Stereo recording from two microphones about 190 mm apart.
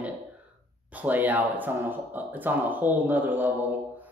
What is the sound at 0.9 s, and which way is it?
Speech, 10° right (ahead or behind).